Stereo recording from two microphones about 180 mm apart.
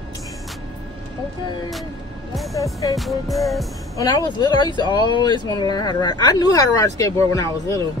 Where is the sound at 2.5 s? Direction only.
20° left (ahead or behind).